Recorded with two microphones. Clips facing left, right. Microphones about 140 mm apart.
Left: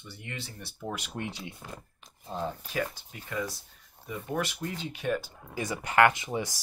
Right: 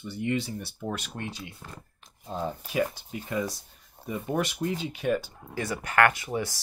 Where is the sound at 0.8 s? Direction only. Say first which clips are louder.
Even; 15° left (ahead or behind).